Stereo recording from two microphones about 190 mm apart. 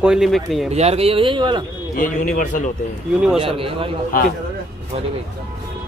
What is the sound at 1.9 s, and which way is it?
Speech, 45° left (ahead or behind).